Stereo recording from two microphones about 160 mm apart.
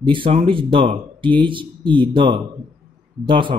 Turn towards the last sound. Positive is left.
turn(degrees=-30)  # may be behind; listen again after turning